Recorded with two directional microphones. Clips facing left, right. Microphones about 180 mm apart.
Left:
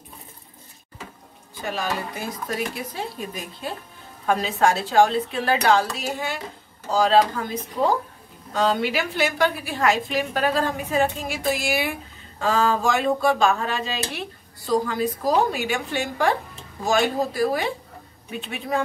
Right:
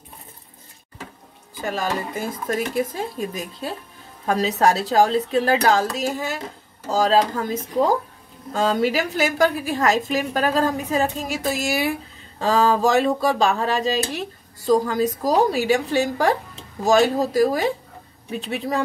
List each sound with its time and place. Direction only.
1.7 s a woman's voice: 45° right (ahead or behind)